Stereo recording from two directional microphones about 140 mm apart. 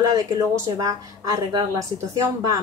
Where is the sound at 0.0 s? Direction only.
25° right (ahead or behind).